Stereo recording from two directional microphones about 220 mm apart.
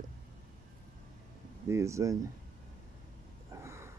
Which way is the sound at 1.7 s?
15° right (ahead or behind).